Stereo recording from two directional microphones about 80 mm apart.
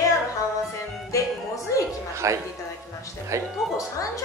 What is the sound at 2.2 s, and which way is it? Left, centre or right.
Speech, right.